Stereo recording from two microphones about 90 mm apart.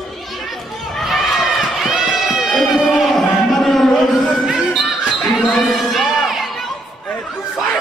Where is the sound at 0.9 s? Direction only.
Centre (ahead or behind).